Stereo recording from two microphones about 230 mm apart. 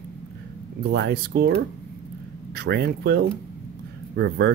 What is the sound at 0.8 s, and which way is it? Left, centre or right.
Speech, right.